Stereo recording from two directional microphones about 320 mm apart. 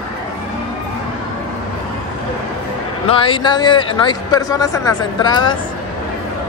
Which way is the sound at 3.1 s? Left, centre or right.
Centre.